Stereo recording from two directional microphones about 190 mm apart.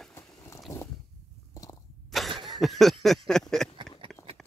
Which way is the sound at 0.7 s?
15° left (ahead or behind).